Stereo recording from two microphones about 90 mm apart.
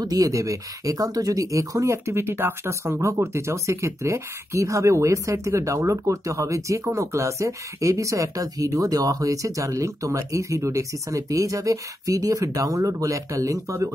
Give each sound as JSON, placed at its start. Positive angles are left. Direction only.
{"t": 0.0, "sound": "speech", "side_deg": -45}